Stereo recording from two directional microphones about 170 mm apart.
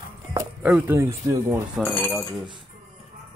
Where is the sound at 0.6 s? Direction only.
10° right (ahead or behind).